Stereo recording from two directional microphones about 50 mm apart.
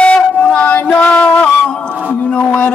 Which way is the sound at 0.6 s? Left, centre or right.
Left.